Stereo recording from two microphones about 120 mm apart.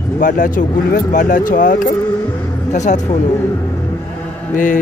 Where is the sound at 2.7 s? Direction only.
80° left.